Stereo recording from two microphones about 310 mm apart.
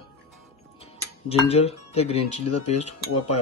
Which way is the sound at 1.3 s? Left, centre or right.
Left.